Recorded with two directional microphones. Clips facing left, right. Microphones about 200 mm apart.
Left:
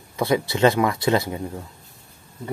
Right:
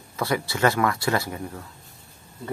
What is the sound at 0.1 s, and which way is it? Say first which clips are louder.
Speech: left 5 dB; 20° left (ahead or behind).